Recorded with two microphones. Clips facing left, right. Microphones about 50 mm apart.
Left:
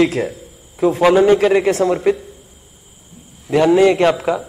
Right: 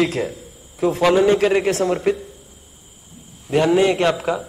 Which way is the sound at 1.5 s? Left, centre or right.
Left.